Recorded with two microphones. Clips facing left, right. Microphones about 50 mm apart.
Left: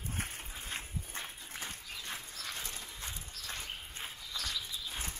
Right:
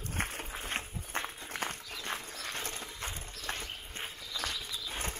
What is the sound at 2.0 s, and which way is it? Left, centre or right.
Horse, right.